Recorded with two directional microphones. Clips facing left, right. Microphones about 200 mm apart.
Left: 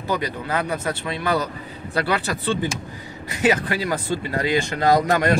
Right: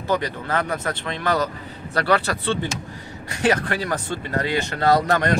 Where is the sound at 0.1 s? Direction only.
10° left (ahead or behind).